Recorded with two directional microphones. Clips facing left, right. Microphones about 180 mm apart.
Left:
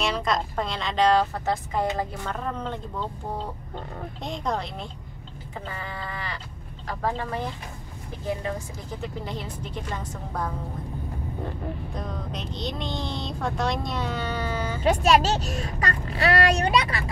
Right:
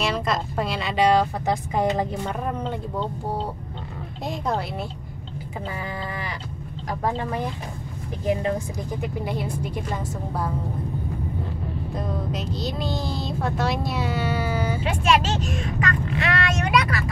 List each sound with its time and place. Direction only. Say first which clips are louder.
0.0 s a woman's voice: right 1 dB; centre (ahead or behind)
4.2 s a woman's voice: right 3 dB; 5° right (ahead or behind)
8.9 s a woman's voice: right 4 dB; 10° right (ahead or behind)
11.9 s speech: right 5 dB; 5° right (ahead or behind)
14.8 s speech: left 4 dB; 40° left (ahead or behind)